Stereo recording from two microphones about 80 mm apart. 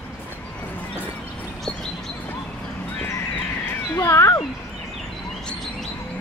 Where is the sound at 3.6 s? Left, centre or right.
Left.